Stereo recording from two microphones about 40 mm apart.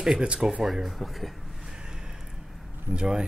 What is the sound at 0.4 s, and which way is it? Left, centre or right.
Speech, centre.